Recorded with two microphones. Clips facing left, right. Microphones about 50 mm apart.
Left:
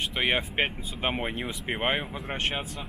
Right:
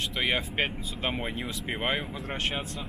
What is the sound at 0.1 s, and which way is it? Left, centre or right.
Speech, centre.